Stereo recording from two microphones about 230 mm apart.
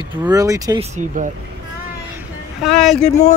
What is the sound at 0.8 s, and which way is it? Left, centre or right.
Speech, right.